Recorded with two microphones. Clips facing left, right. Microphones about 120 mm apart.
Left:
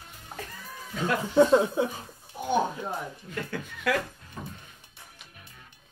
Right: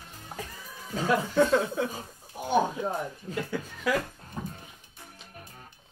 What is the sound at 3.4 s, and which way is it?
Speech, 5° right (ahead or behind).